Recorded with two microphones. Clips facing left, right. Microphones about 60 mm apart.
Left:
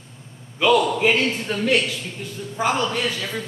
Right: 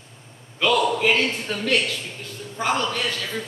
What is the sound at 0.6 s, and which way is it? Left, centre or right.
A man's voice, centre.